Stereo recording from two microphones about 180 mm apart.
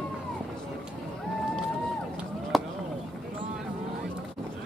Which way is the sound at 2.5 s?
Centre (ahead or behind).